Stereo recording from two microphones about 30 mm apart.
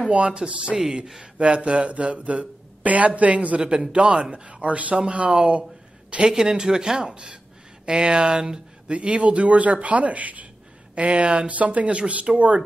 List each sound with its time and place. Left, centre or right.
0.1 s speech: right
2.8 s a man's voice: right
3.6 s speech: right
5.5 s a sound: right
6.3 s a man's voice: right
11.0 s a man's voice: right